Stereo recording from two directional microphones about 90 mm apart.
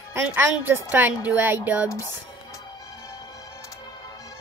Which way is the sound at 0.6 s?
20° right (ahead or behind).